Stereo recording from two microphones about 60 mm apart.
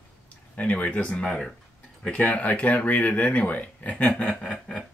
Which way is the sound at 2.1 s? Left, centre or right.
Left.